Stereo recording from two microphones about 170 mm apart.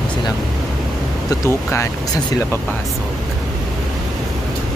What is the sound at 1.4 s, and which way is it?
Speech, 15° left (ahead or behind).